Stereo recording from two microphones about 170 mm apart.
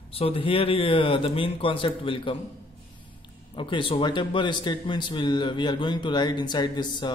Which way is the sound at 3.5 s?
30° left (ahead or behind).